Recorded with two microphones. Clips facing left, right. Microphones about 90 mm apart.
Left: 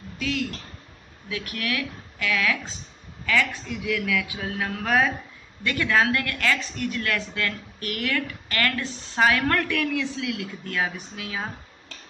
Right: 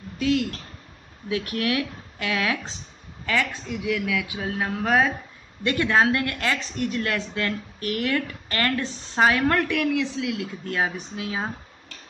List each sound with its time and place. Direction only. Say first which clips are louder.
1.3 s speech: right 5 dB; 30° right (ahead or behind)
5.6 s speech: right 2 dB; 25° right (ahead or behind)